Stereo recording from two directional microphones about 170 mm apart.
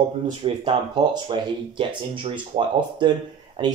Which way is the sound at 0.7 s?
25° right (ahead or behind).